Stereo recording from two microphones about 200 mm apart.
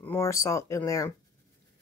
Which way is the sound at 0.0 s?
10° left (ahead or behind).